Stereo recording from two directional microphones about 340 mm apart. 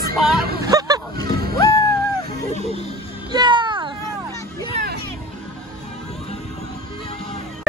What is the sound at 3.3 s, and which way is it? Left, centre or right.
Vehicle, centre.